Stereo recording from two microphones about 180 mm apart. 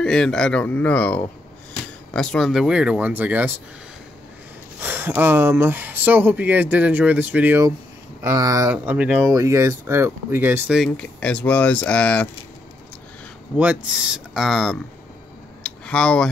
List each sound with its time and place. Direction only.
0.0 s speech: 5° left (ahead or behind)
4.7 s speech: 10° right (ahead or behind)
10.8 s speech: 5° left (ahead or behind)
13.6 s speech: 5° right (ahead or behind)
15.6 s a sound: 5° left (ahead or behind)